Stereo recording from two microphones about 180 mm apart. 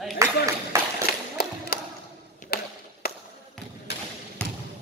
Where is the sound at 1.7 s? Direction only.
55° left (ahead or behind).